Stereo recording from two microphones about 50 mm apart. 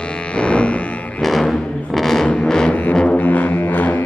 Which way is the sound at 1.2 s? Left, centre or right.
Centre.